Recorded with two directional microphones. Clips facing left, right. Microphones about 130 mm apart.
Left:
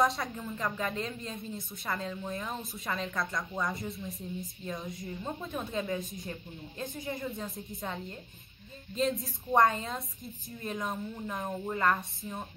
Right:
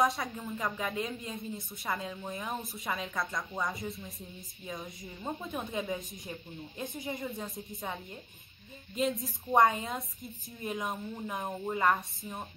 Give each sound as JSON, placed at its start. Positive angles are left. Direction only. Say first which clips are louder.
{"t": 0.0, "sound": "a woman's voice", "louder": "left 1 dB", "side_deg": 0}
{"t": 5.5, "sound": "a woman's voice", "louder": "left 2 dB", "side_deg": -20}
{"t": 7.2, "sound": "speech", "louder": "left 1 dB", "side_deg": 0}
{"t": 9.0, "sound": "speech", "louder": "left 1 dB", "side_deg": 0}
{"t": 11.7, "sound": "a woman's voice", "louder": "right 1 dB", "side_deg": -15}